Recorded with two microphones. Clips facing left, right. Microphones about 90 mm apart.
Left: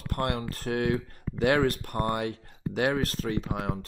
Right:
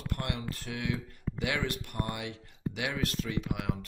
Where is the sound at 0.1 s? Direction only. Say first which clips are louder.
Left 8 dB; 45° left (ahead or behind).